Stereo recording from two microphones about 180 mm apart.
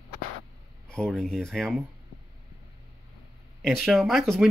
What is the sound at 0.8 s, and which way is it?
Speech, 5° left (ahead or behind).